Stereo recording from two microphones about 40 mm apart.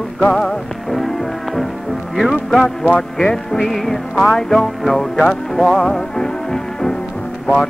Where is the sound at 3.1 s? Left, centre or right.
Centre.